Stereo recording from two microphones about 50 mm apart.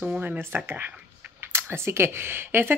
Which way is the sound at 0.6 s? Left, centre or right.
Right.